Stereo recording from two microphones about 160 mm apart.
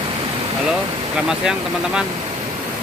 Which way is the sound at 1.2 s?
5° right (ahead or behind).